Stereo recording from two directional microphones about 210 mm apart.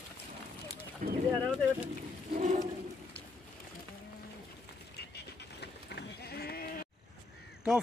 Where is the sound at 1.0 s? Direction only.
35° right (ahead or behind).